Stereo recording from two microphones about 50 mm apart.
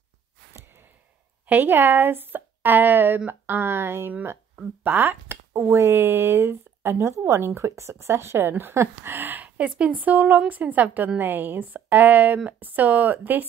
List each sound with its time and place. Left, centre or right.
0.5 s a sound: right
1.4 s a woman's voice: right
4.6 s speech: right
5.3 s speech: right
9.6 s a woman's voice: right